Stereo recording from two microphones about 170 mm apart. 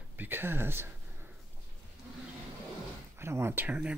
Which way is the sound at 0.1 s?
10° right (ahead or behind).